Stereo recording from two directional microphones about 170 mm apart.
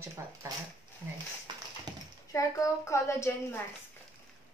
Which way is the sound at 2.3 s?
20° left (ahead or behind).